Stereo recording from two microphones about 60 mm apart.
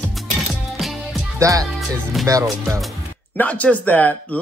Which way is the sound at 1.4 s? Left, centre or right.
Right.